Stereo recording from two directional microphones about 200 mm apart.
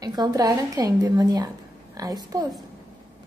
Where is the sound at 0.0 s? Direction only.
20° right (ahead or behind).